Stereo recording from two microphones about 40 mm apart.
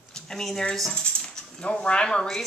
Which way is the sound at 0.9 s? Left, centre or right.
Left.